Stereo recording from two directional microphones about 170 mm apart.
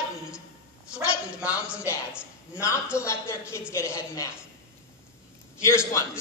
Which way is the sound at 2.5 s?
15° left (ahead or behind).